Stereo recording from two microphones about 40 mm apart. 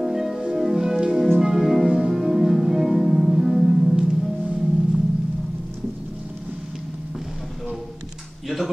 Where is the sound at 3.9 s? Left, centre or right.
Right.